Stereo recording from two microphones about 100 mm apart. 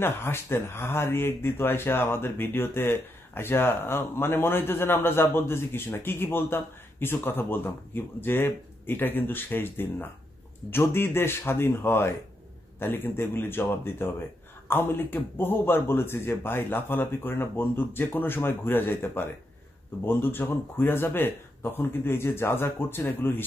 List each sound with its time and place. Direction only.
0.0 s speech: 25° left (ahead or behind)